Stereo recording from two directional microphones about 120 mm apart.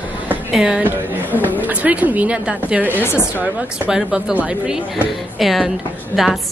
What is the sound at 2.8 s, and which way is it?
Speech, 15° left (ahead or behind).